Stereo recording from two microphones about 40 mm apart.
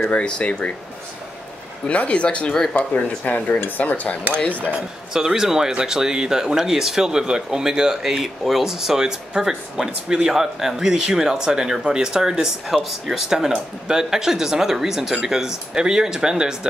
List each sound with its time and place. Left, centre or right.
0.1 s speech: left
1.9 s speech: left
2.7 s speech: left
5.1 s speech: centre